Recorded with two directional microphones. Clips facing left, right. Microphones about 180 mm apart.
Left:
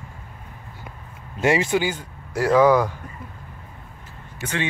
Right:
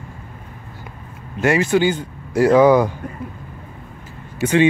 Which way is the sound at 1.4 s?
20° left (ahead or behind).